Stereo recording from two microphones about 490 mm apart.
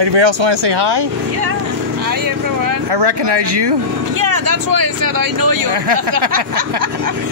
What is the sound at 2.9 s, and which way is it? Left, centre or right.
Speech, right.